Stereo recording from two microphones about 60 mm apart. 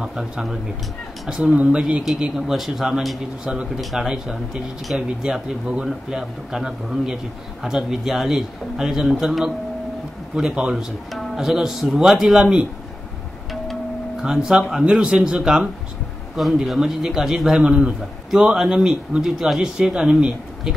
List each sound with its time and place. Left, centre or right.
0.0 s a man's voice: centre
1.4 s a man's voice: right
14.2 s a man's voice: centre
16.3 s a man's voice: centre
17.6 s a man's voice: centre